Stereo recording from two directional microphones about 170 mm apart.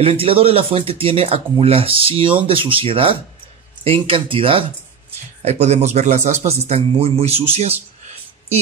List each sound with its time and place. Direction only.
0.0 s speech: 35° right (ahead or behind)